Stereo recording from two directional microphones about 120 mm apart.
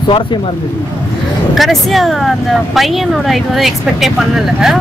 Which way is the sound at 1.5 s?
Centre (ahead or behind).